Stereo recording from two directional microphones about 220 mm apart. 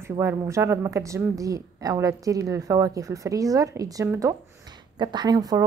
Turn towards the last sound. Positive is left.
turn(degrees=-15)  # may be behind; listen again after turning